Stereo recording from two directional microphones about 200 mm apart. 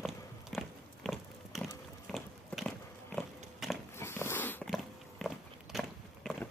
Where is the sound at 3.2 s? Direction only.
Centre (ahead or behind).